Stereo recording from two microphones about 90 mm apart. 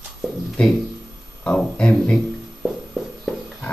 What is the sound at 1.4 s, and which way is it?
Speech, 10° left (ahead or behind).